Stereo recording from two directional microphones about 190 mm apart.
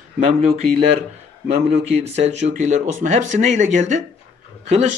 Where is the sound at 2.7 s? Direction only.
40° right (ahead or behind).